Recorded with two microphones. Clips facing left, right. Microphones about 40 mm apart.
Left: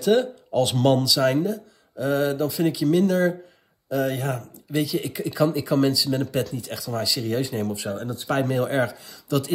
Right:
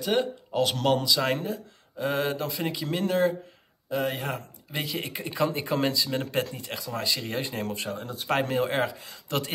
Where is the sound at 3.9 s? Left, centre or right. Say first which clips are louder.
Left 4 dB; centre.